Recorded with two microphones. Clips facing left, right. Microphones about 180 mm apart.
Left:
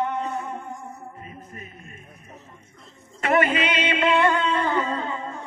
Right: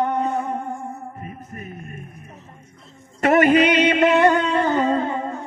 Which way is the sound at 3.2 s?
45° right (ahead or behind).